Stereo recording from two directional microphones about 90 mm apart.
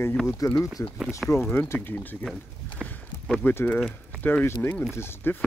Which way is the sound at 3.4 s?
20° left (ahead or behind).